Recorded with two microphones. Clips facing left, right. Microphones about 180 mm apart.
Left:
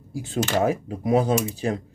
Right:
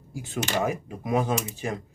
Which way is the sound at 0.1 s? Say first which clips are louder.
Left 5 dB; 35° left (ahead or behind).